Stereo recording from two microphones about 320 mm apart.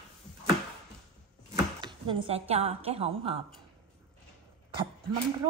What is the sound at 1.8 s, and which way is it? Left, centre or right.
A woman's voice, centre.